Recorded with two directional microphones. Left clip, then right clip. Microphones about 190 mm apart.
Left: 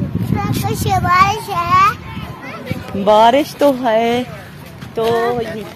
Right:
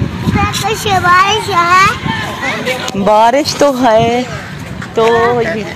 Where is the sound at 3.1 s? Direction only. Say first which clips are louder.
Right 1 dB; 15° right (ahead or behind).